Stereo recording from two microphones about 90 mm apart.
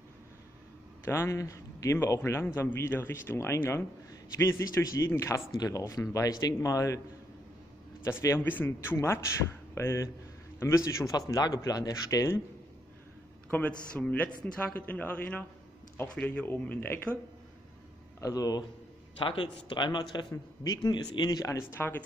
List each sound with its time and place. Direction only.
1.0 s a man's voice: 30° left (ahead or behind)
8.1 s a man's voice: 35° left (ahead or behind)
8.5 s a man's voice: 25° left (ahead or behind)
13.5 s a man's voice: 15° left (ahead or behind)
18.2 s speech: 45° left (ahead or behind)
19.1 s speech: 65° left (ahead or behind); by 21.5 s 50° left (ahead or behind)
21.5 s speech: 25° left (ahead or behind)